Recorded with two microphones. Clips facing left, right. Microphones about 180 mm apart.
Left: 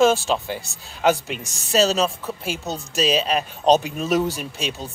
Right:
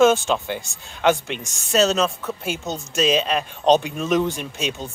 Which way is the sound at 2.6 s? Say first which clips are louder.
Right 1 dB; 35° left (ahead or behind).